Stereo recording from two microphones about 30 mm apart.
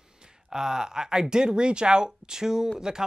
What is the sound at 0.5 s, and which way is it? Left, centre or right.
Speech, centre.